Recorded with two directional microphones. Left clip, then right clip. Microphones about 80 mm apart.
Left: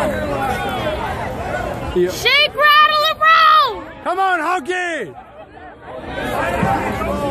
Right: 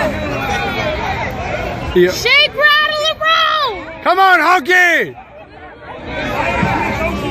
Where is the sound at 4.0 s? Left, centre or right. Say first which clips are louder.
Right 7 dB; right.